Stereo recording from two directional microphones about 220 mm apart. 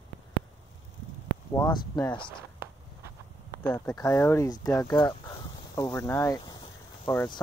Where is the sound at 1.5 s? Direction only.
20° left (ahead or behind).